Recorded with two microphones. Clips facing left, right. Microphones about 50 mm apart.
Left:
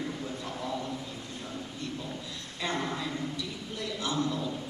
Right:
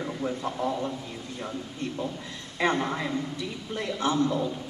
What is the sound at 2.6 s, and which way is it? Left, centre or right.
A man's voice, right.